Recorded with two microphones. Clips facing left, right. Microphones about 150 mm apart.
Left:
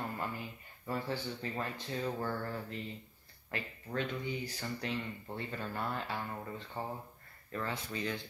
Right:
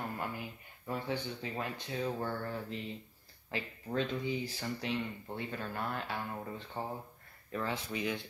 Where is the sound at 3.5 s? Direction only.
25° right (ahead or behind).